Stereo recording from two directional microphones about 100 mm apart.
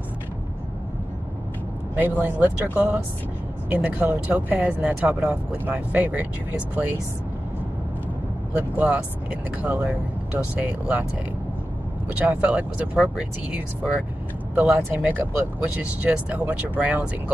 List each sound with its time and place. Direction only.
2.0 s speech: 15° right (ahead or behind)
8.5 s speech: 15° right (ahead or behind)
12.1 s speech: 15° right (ahead or behind)